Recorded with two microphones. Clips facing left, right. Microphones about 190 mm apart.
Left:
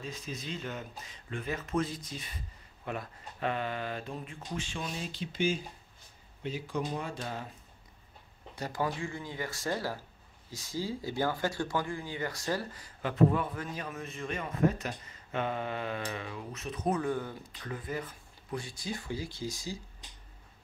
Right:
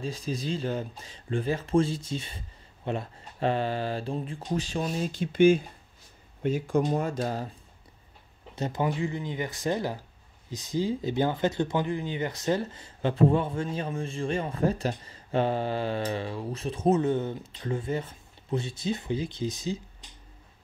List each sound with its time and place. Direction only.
0.0 s speech: 30° right (ahead or behind)
8.5 s speech: 20° right (ahead or behind)